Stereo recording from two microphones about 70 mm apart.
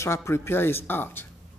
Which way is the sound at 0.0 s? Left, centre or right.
Left.